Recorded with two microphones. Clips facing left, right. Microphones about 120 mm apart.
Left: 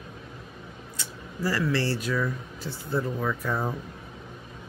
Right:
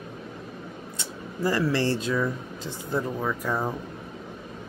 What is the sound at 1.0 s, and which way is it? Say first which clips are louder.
Speech: right 3 dB; 25° right (ahead or behind).